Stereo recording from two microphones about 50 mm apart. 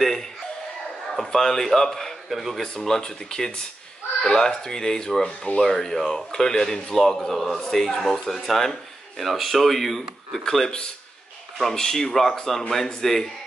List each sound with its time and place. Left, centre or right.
0.0 s music: centre
1.1 s a man's voice: centre
3.0 s a man's voice: centre
11.7 s a man's voice: centre